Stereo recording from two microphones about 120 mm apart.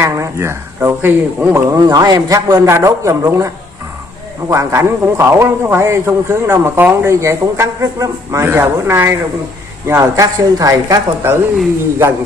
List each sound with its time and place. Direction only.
0.0 s speech: 25° right (ahead or behind)
1.7 s speech: 30° right (ahead or behind)